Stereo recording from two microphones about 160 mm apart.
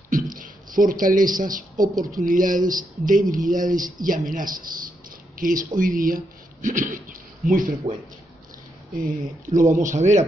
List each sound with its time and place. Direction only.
0.1 s speech: 60° right (ahead or behind)
9.0 s speech: 55° right (ahead or behind)